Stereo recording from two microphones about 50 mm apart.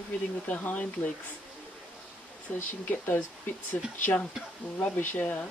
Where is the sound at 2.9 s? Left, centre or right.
Left.